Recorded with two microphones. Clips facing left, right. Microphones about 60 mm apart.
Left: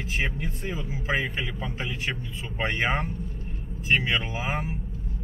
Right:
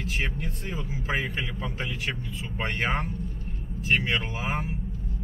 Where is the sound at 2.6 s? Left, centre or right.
Centre.